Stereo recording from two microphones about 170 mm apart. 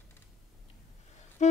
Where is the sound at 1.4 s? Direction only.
45° left (ahead or behind).